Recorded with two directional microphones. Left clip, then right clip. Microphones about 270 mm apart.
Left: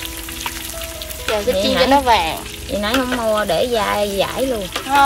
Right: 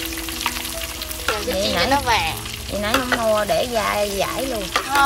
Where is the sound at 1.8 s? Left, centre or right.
Centre.